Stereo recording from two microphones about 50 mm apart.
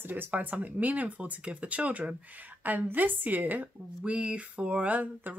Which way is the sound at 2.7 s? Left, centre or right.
Right.